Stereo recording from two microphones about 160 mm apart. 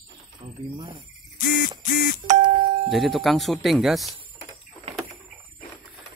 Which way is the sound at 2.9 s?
Centre (ahead or behind).